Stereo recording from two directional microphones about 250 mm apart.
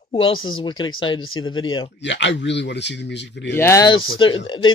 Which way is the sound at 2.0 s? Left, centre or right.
Left.